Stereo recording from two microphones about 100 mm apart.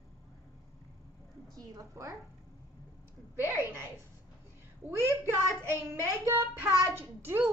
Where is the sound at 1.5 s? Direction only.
35° right (ahead or behind).